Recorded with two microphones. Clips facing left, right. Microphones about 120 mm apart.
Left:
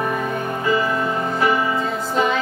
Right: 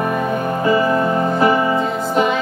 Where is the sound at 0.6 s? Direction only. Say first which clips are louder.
Right 5 dB; 35° right (ahead or behind).